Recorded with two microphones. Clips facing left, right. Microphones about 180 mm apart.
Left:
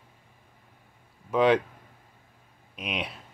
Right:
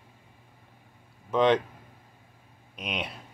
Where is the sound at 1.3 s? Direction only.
5° left (ahead or behind).